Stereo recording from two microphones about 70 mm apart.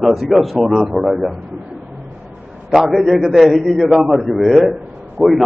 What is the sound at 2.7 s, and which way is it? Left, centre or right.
A man's voice, centre.